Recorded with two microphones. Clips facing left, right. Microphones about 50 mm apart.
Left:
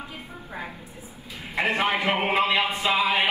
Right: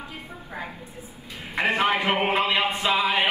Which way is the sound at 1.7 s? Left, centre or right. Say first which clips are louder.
Right 2 dB; right.